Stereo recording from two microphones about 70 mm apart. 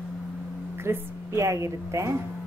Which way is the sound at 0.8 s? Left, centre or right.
Right.